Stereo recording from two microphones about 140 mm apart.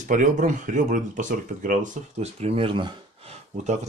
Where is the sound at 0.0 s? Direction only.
65° right (ahead or behind); by 3.3 s 35° right (ahead or behind).